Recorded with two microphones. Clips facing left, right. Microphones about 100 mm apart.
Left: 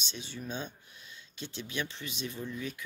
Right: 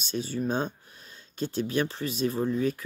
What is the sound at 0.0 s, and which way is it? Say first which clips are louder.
Speech: right 12 dB; 45° right (ahead or behind).